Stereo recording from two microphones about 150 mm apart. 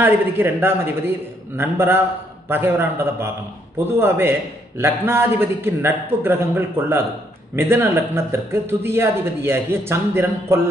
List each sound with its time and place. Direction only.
0.0 s a man's voice: 15° right (ahead or behind)